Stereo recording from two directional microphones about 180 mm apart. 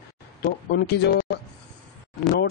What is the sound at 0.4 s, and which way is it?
Speech, 65° left (ahead or behind).